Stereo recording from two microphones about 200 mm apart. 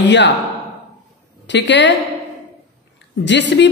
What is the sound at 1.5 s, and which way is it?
Speech, 65° left (ahead or behind).